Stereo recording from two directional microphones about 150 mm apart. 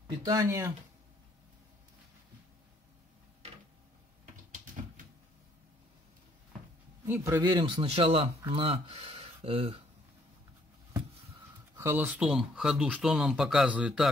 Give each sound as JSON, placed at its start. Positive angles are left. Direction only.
{"t": 0.2, "sound": "speech", "side_deg": -20}
{"t": 7.1, "sound": "speech", "side_deg": -15}
{"t": 7.4, "sound": "speech", "side_deg": -35}
{"t": 11.7, "sound": "speech", "side_deg": -15}
{"t": 12.3, "sound": "speech", "side_deg": -5}